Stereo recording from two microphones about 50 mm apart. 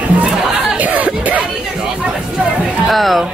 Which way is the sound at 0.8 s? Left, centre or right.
Right.